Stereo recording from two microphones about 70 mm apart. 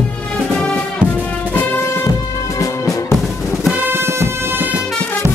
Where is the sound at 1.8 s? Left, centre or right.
Left.